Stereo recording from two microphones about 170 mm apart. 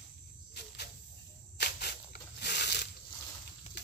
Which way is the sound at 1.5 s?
70° left (ahead or behind).